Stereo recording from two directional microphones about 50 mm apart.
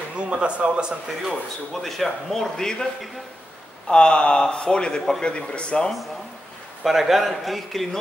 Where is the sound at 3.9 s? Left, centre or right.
Centre.